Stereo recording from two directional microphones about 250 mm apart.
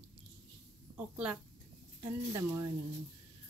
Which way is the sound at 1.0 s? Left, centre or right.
Centre.